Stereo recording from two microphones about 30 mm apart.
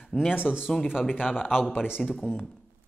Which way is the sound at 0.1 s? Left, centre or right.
Right.